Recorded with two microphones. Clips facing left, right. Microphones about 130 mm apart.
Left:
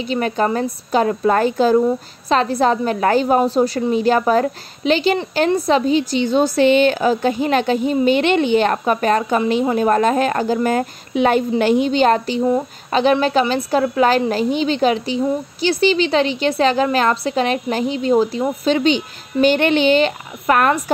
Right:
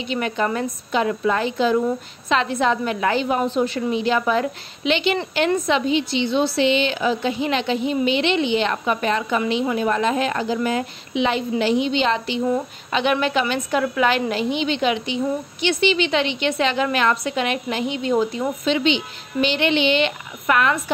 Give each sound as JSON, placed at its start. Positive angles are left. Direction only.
{"t": 0.0, "sound": "a woman's voice", "side_deg": 40}